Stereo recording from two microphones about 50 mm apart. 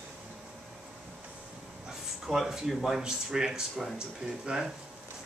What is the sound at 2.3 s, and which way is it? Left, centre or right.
Speech, centre.